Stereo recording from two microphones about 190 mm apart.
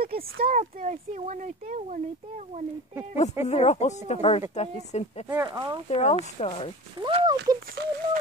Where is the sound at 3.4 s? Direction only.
35° left (ahead or behind).